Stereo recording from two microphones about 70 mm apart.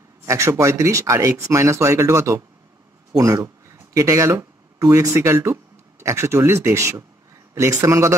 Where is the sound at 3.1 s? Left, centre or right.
Right.